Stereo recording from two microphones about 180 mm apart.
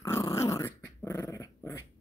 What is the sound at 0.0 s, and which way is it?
Dog, 20° left (ahead or behind).